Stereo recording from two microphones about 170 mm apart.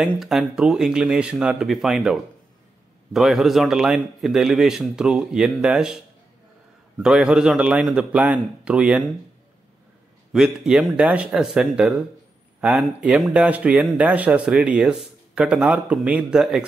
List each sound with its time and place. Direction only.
0.0 s speech: centre (ahead or behind)
10.3 s speech: 5° right (ahead or behind)